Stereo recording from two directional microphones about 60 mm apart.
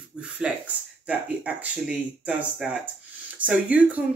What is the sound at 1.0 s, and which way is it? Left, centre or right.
Speech, right.